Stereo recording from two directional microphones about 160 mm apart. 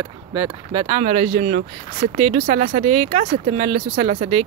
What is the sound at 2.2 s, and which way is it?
Speech, 35° right (ahead or behind).